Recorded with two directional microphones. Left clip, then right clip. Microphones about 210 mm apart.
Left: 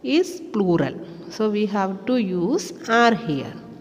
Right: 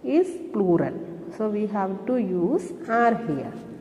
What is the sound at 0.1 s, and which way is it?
Speech, 50° left (ahead or behind).